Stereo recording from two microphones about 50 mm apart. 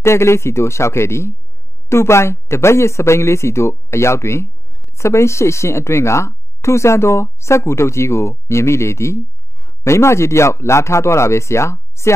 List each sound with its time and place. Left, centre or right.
0.0 s speech: left